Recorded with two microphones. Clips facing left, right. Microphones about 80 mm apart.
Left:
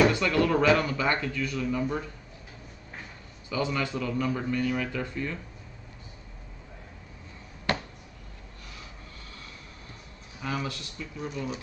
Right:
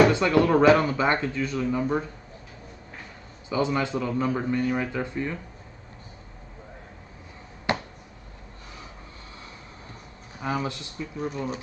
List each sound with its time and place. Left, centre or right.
0.1 s a man's voice: right
3.4 s a man's voice: right
7.7 s a sound: centre
10.4 s a man's voice: right